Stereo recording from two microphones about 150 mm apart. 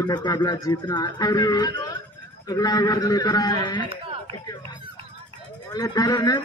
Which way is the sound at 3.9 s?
40° right (ahead or behind).